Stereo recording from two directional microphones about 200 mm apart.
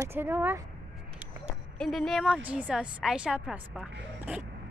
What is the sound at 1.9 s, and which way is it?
A woman's voice, centre (ahead or behind).